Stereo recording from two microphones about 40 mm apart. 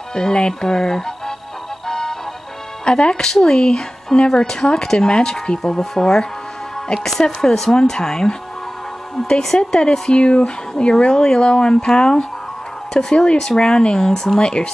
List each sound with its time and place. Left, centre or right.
0.1 s speech: centre
1.9 s music: centre
2.8 s speech: left
9.6 s speech: left